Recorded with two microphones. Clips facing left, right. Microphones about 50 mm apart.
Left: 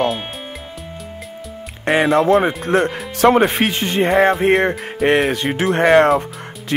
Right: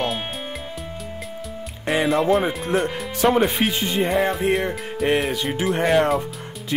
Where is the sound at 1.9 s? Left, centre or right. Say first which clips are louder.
Left 5 dB; left.